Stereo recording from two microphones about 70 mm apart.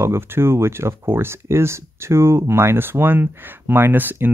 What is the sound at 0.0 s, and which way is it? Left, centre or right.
Speech, right.